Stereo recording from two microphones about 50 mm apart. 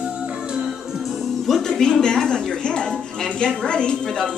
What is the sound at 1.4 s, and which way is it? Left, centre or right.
A woman's voice, centre.